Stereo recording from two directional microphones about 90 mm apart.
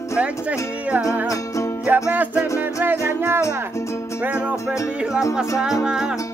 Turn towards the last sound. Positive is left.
turn(degrees=-10)  # may be behind; listen again after turning